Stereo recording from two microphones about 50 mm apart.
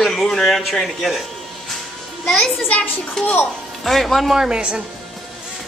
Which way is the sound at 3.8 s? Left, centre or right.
Centre.